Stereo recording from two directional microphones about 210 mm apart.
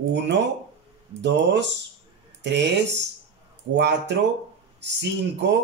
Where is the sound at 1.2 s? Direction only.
55° right (ahead or behind).